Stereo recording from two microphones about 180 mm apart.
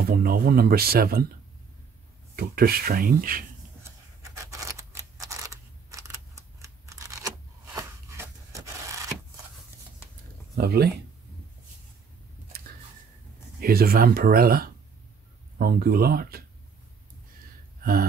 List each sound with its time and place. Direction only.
0.1 s speech: 55° right (ahead or behind)
2.3 s speech: 60° right (ahead or behind)
4.2 s scissors: 15° right (ahead or behind)
5.2 s a sound: 20° right (ahead or behind)
10.5 s speech: 60° right (ahead or behind)
13.6 s speech: 55° right (ahead or behind)